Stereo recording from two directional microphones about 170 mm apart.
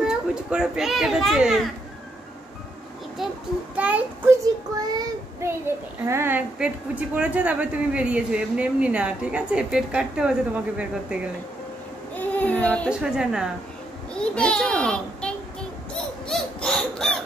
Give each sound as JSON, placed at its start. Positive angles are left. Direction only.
{"t": 0.0, "sound": "a child's voice", "side_deg": -5}
{"t": 3.2, "sound": "a child's voice", "side_deg": 0}
{"t": 4.7, "sound": "child singing", "side_deg": -20}
{"t": 6.0, "sound": "a woman's voice", "side_deg": -15}
{"t": 12.2, "sound": "child singing", "side_deg": 10}
{"t": 13.0, "sound": "a child's voice", "side_deg": -5}
{"t": 16.3, "sound": "a sound", "side_deg": 5}